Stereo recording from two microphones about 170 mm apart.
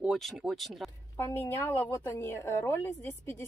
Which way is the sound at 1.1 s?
15° left (ahead or behind).